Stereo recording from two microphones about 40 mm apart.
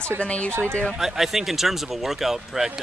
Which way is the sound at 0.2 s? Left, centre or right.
Left.